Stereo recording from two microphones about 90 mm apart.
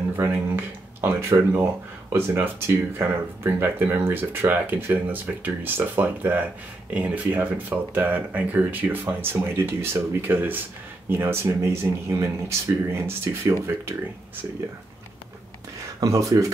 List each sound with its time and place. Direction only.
0.1 s speech: 25° right (ahead or behind)
16.0 s speech: 35° right (ahead or behind)